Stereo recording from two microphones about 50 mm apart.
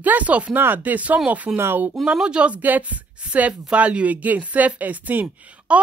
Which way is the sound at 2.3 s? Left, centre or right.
Right.